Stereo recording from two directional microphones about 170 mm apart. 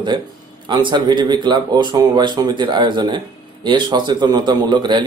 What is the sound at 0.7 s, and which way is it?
Speech, 25° right (ahead or behind).